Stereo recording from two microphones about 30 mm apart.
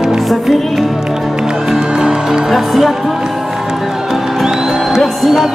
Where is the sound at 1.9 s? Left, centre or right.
Centre.